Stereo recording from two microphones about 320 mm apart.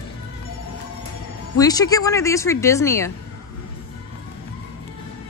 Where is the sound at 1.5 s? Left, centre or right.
Centre.